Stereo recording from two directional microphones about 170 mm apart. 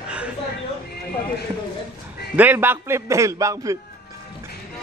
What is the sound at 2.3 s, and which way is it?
Music, 10° right (ahead or behind).